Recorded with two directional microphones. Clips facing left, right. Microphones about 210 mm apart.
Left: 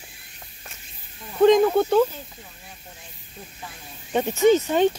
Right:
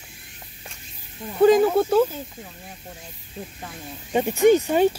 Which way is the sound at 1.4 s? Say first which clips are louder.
Even; 5° right (ahead or behind).